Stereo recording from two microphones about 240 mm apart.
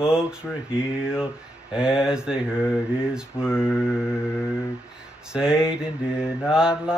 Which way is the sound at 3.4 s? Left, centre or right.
Centre.